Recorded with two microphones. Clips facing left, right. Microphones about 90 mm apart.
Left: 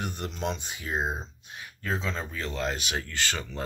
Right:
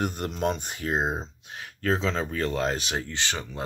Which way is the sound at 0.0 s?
45° right (ahead or behind).